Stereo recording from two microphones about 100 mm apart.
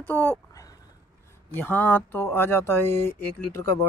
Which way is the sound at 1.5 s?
20° left (ahead or behind).